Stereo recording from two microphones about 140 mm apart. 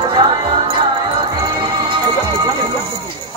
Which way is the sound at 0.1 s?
35° right (ahead or behind).